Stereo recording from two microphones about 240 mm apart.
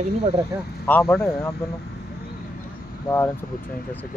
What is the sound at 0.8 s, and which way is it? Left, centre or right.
Speech, centre.